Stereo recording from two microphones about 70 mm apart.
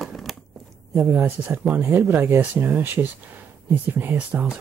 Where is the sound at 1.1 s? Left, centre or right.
Right.